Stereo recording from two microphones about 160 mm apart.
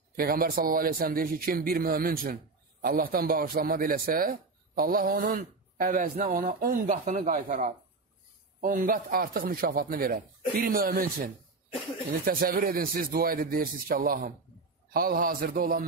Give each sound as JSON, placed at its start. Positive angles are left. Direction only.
{"t": 0.1, "sound": "a man's voice", "side_deg": -65}